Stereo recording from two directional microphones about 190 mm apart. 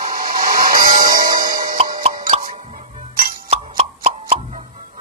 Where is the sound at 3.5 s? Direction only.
35° right (ahead or behind).